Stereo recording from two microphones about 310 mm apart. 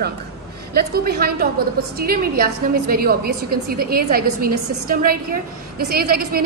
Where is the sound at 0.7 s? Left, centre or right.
Right.